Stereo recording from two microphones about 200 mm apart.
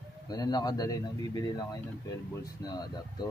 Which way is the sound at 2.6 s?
20° left (ahead or behind).